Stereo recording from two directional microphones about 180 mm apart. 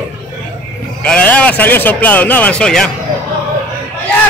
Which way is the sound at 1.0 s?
5° left (ahead or behind).